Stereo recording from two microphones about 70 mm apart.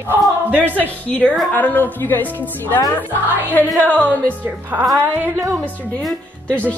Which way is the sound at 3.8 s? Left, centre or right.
Left.